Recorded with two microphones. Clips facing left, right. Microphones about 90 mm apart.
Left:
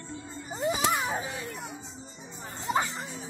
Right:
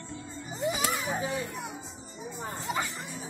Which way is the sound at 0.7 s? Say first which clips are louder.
Left 3 dB; 25° left (ahead or behind).